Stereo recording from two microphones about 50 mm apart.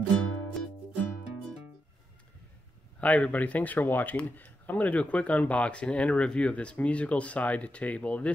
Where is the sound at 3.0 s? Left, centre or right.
Left.